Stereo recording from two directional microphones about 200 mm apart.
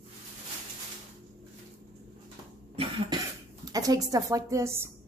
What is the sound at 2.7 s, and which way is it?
Cough, 25° right (ahead or behind).